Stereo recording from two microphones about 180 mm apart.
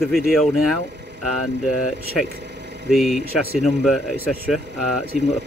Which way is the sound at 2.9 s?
Centre (ahead or behind).